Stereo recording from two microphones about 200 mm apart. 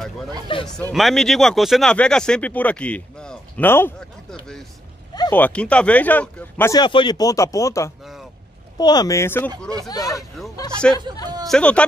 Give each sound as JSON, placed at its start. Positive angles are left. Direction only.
{"t": 0.7, "sound": "speech", "side_deg": 5}
{"t": 6.8, "sound": "speech", "side_deg": 25}
{"t": 10.8, "sound": "speech", "side_deg": 5}